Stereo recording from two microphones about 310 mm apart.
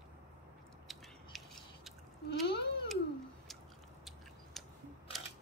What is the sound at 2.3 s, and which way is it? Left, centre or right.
Sheep, left.